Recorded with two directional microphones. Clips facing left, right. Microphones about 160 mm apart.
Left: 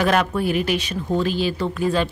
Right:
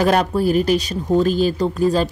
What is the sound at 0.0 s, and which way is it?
A woman's voice, 35° right (ahead or behind).